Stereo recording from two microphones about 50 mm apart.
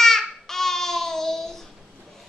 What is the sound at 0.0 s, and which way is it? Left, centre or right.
Babbling, centre.